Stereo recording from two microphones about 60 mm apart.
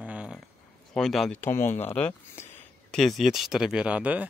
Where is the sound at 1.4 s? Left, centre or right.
Left.